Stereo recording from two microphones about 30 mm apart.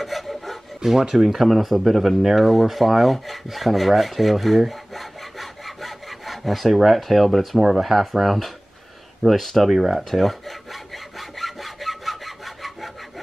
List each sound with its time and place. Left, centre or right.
0.0 s filing: centre
0.8 s speech: right
1.1 s speech: centre
1.6 s rub: centre
7.0 s speech: centre
9.7 s sawing: centre